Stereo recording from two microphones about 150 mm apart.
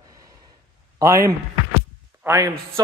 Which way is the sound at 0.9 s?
20° right (ahead or behind).